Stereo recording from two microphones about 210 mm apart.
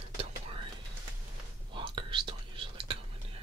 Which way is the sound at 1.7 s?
25° right (ahead or behind).